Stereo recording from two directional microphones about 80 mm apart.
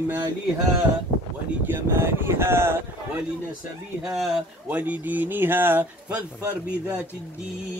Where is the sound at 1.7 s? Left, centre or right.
Right.